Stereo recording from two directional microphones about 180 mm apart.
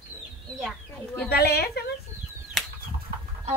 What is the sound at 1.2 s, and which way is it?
Speech, 60° left (ahead or behind).